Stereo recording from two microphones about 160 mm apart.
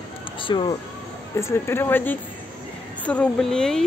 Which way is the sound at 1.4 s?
15° left (ahead or behind).